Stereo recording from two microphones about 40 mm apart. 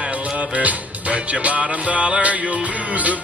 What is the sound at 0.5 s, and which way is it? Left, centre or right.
Music, right.